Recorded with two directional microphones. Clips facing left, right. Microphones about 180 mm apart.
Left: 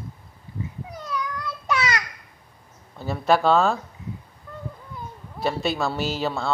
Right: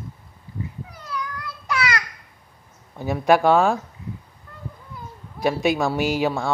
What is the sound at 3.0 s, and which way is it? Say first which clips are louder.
Speech: right 3 dB; 15° right (ahead or behind).